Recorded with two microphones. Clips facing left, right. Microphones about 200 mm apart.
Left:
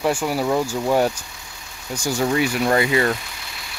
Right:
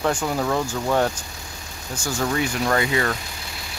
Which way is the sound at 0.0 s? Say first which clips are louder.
Left 2 dB; 10° left (ahead or behind).